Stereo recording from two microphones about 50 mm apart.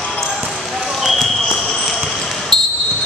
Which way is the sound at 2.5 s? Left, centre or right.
Centre.